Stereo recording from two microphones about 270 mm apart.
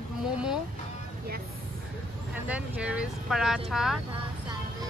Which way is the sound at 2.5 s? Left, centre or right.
Centre.